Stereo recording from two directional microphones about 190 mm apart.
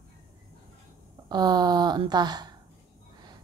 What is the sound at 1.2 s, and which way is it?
A woman's voice, 20° right (ahead or behind).